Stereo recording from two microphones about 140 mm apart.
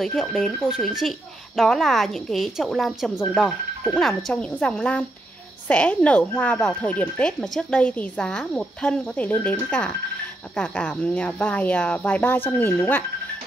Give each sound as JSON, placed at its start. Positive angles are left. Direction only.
{"t": 0.0, "sound": "a woman's voice", "side_deg": 0}